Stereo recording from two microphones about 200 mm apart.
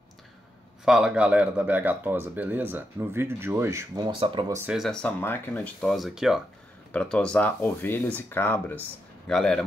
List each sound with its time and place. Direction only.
0.8 s speech: 5° right (ahead or behind); by 4.6 s 25° right (ahead or behind)
4.6 s speech: 5° right (ahead or behind)